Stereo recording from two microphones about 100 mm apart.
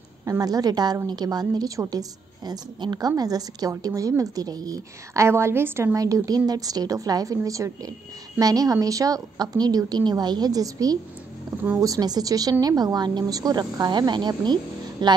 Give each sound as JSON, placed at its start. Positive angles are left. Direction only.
{"t": 0.2, "sound": "a woman's voice", "side_deg": -35}
{"t": 5.9, "sound": "a woman's voice", "side_deg": -35}